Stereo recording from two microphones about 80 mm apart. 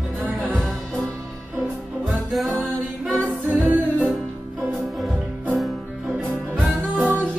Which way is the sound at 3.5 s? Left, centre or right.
Right.